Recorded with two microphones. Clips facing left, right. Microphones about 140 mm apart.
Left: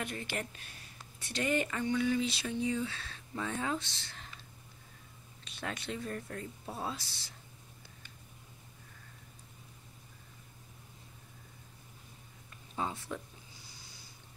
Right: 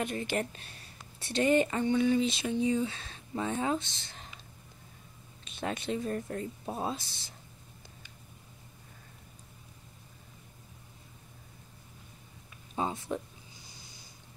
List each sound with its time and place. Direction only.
0.0 s speech: 25° right (ahead or behind)
5.4 s speech: 20° right (ahead or behind)
12.7 s speech: 20° right (ahead or behind)